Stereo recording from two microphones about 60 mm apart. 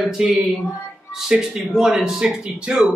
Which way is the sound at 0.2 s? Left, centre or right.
Centre.